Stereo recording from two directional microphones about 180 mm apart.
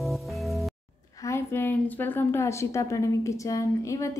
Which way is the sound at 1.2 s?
15° left (ahead or behind).